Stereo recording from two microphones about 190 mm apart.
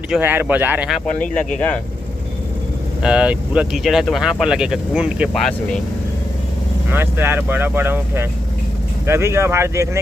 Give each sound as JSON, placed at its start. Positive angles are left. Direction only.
{"t": 0.1, "sound": "speech", "side_deg": -10}
{"t": 3.0, "sound": "speech", "side_deg": -5}
{"t": 6.9, "sound": "speech", "side_deg": -10}